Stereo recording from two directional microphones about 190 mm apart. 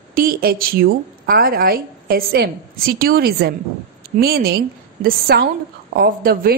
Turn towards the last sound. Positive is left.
turn(degrees=-50)  # may be behind; listen again after turning